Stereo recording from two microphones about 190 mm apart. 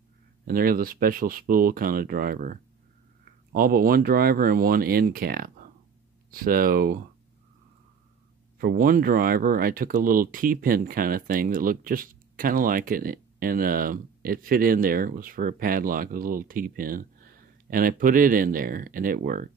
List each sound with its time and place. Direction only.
0.5 s speech: 50° right (ahead or behind)
8.5 s speech: 50° right (ahead or behind)